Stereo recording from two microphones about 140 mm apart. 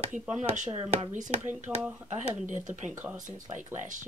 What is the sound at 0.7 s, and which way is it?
Speech, 45° right (ahead or behind).